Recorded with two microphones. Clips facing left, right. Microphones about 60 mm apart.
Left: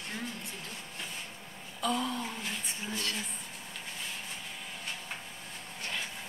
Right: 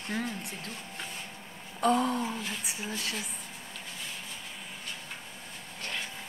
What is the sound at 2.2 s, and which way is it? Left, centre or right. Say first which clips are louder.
Speech: right 2 dB; centre.